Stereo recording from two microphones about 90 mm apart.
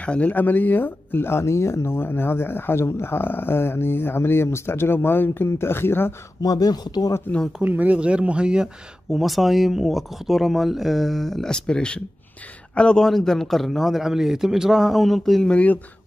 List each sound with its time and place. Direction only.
0.0 s speech: 15° left (ahead or behind)
6.4 s speech: 45° left (ahead or behind)
7.6 s speech: 20° right (ahead or behind); by 15.5 s centre (ahead or behind)
15.5 s speech: 15° left (ahead or behind)